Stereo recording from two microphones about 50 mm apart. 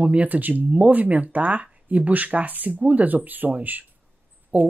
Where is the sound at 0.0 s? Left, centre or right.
Right.